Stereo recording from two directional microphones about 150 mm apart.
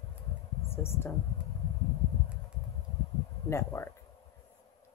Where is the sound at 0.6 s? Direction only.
15° left (ahead or behind).